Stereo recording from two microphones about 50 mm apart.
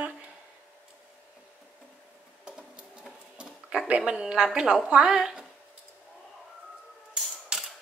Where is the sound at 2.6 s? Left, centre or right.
Right.